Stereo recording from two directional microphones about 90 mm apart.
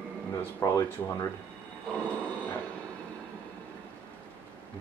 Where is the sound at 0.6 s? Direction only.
35° left (ahead or behind).